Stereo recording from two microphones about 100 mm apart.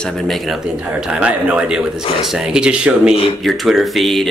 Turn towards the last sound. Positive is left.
turn(degrees=0)  # may be behind; listen again after turning